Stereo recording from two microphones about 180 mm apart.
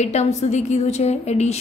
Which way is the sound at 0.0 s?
40° left (ahead or behind).